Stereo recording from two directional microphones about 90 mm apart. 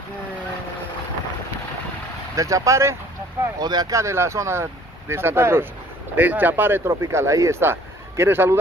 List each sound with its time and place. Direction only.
2.3 s speech: 40° right (ahead or behind)
3.5 s speech: 50° right (ahead or behind)
4.0 s speech: 30° right (ahead or behind)